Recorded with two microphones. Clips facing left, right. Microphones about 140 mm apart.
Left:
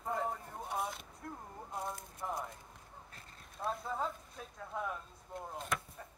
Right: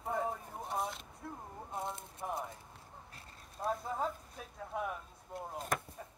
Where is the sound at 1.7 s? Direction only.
25° right (ahead or behind).